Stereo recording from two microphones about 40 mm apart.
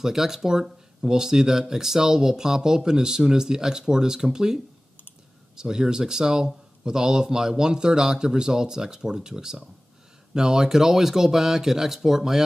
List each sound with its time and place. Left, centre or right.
0.0 s speech: centre
5.6 s speech: centre